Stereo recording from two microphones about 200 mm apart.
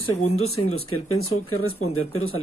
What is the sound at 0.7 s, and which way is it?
Speech, 90° left.